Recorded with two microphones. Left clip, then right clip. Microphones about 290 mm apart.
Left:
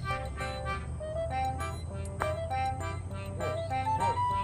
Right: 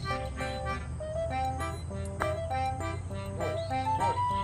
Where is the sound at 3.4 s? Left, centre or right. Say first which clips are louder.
Right 1 dB; centre.